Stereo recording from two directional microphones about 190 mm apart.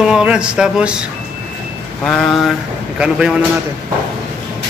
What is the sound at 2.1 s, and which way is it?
A man's voice, centre (ahead or behind).